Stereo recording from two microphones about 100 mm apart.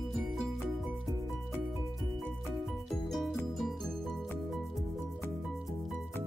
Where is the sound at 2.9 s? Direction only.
Centre (ahead or behind).